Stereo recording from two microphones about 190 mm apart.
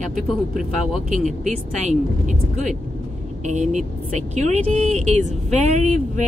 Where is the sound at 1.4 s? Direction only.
40° right (ahead or behind).